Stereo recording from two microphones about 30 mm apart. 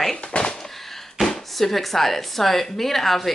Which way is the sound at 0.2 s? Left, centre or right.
Left.